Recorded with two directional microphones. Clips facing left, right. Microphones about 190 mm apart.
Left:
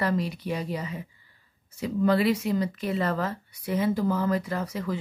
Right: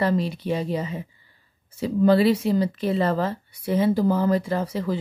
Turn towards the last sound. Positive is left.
turn(degrees=-30)  # may be behind; listen again after turning